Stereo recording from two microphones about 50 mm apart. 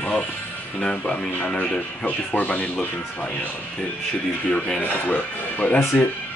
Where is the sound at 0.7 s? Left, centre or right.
Centre.